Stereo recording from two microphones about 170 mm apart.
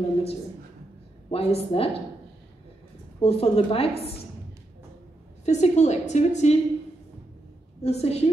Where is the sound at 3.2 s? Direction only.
35° left (ahead or behind).